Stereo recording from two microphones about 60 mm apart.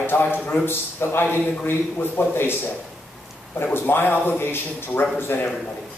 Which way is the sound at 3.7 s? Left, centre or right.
Left.